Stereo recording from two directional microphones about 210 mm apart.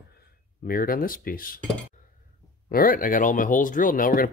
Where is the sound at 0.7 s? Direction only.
45° left (ahead or behind).